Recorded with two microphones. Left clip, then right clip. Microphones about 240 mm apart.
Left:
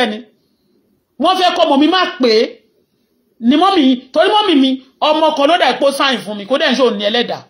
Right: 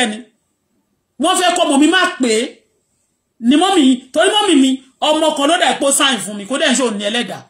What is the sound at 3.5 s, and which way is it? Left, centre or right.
Speech, centre.